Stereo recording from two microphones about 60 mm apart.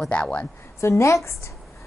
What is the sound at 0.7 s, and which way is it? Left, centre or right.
Speech, left.